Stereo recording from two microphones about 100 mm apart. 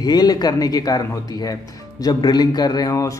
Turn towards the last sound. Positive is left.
turn(degrees=35)  # may be behind; listen again after turning